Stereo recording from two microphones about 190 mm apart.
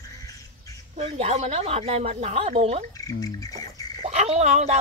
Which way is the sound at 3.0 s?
20° left (ahead or behind).